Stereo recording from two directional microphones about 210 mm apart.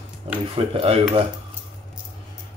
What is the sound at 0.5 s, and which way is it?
Speech, 25° right (ahead or behind).